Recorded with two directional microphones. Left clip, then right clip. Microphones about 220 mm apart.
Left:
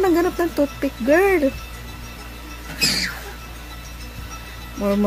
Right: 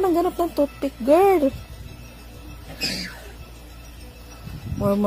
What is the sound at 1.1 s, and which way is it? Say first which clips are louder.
Speech: even; 20° right (ahead or behind).